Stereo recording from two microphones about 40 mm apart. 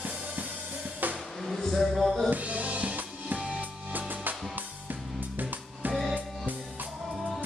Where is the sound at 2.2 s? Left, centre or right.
Right.